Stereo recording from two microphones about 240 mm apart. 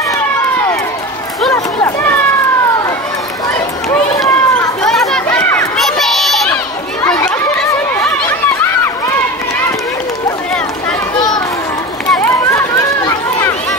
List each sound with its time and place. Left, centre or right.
1.5 s a sound: centre
3.4 s run: centre
11.1 s children playing: centre
12.1 s run: centre